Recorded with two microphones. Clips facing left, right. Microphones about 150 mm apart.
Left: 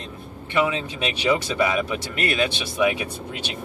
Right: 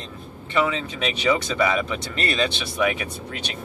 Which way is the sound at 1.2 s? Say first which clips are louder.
Even; 10° left (ahead or behind).